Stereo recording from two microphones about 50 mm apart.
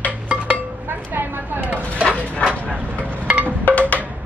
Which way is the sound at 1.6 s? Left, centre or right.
Right.